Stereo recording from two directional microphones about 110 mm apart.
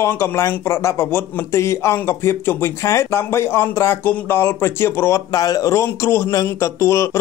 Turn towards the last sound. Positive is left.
turn(degrees=25)  # may be behind; listen again after turning